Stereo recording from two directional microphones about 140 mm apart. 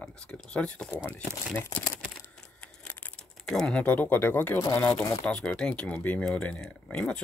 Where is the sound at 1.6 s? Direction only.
10° left (ahead or behind).